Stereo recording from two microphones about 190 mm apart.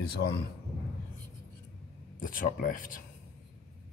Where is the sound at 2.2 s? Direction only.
45° left (ahead or behind).